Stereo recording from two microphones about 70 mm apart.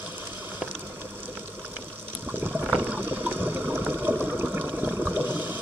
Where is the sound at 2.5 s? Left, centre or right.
Centre.